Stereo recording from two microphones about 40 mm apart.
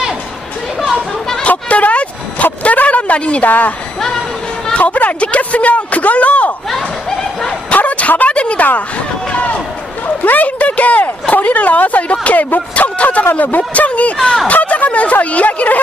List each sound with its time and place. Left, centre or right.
1.5 s a sound: left
3.4 s speech: left
4.7 s speech: left
7.7 s a sound: left
10.2 s speech: left
13.2 s speech: left